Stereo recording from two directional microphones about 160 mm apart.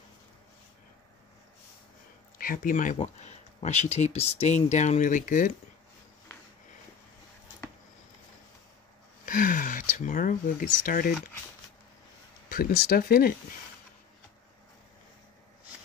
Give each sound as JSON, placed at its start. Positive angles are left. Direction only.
{"t": 2.3, "sound": "speech", "side_deg": 60}
{"t": 9.2, "sound": "speech", "side_deg": 60}
{"t": 12.4, "sound": "speech", "side_deg": 65}